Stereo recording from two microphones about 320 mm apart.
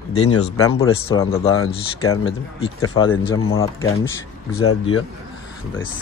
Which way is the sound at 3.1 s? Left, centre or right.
Left.